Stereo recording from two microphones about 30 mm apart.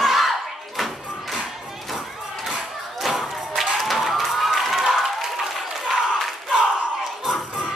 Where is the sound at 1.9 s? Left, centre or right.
Centre.